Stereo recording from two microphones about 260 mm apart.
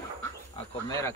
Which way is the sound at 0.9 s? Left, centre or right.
Centre.